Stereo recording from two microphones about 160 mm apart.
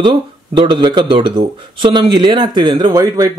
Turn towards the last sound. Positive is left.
turn(degrees=-20)  # may be behind; listen again after turning